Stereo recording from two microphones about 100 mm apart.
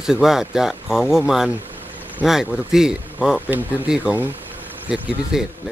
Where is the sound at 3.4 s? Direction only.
15° right (ahead or behind).